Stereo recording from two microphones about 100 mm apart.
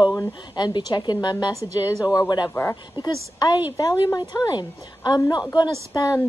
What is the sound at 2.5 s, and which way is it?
Speech, 30° left (ahead or behind).